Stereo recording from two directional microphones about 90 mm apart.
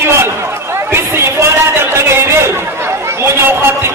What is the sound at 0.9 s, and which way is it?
Chatter, 30° right (ahead or behind).